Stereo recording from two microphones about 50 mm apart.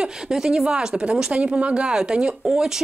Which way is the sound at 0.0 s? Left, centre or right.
Centre.